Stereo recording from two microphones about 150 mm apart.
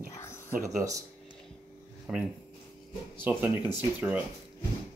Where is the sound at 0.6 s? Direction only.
20° right (ahead or behind).